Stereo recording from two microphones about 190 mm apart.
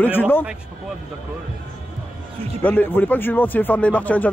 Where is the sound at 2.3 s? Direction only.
30° right (ahead or behind).